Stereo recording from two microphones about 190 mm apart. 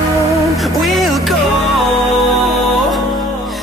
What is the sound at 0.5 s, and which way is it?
Music, centre (ahead or behind).